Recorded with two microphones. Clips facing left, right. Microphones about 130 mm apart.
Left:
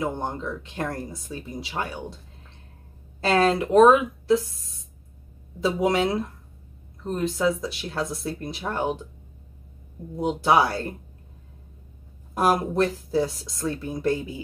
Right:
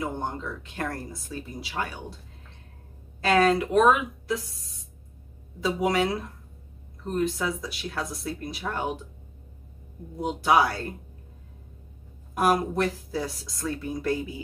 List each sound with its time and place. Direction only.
0.0 s speech: 25° left (ahead or behind)
3.2 s speech: 30° left (ahead or behind)
5.6 s speech: 25° left (ahead or behind)
7.2 s speech: 25° left (ahead or behind)
10.1 s speech: 25° left (ahead or behind)
12.4 s speech: 25° left (ahead or behind)